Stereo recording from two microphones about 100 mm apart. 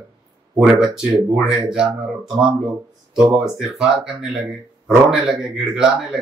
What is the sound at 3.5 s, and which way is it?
A man's voice, 5° right (ahead or behind).